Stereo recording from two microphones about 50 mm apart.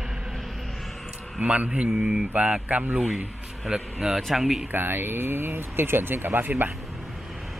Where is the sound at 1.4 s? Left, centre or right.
Right.